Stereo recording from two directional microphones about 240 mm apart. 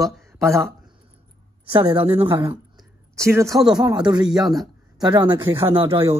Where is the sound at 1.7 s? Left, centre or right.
Right.